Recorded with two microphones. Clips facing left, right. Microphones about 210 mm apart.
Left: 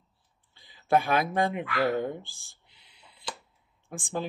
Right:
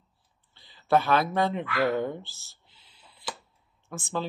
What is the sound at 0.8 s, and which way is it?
Speech, 15° left (ahead or behind).